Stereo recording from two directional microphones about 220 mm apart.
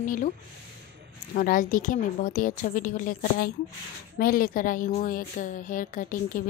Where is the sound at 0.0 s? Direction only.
35° left (ahead or behind).